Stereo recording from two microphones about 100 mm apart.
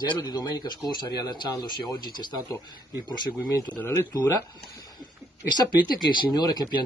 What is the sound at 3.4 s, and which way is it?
Speech, 30° left (ahead or behind).